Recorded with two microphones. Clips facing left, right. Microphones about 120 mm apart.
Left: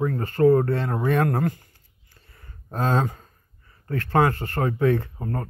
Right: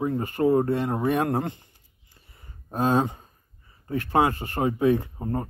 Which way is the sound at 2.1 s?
15° right (ahead or behind).